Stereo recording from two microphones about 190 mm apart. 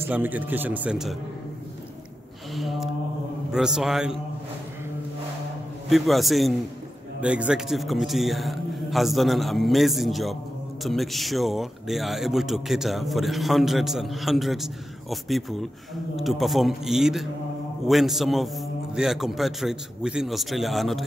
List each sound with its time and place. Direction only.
0.0 s speech: 10° right (ahead or behind)
2.5 s mantra: centre (ahead or behind)
3.5 s a man's voice: 5° right (ahead or behind)
5.9 s a man's voice: centre (ahead or behind)